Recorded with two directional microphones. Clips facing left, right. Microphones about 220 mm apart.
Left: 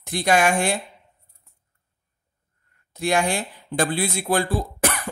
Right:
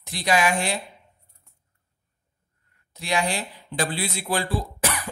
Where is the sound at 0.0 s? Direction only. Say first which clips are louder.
Left 3 dB; 50° left (ahead or behind).